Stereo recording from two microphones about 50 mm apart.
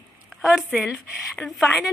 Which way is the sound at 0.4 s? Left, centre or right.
Centre.